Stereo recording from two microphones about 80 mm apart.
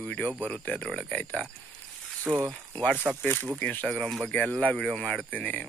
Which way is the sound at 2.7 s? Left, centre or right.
Centre.